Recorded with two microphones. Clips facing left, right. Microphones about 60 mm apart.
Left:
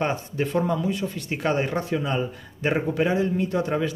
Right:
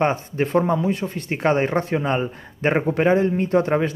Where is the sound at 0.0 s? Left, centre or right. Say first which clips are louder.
Right 5 dB; right.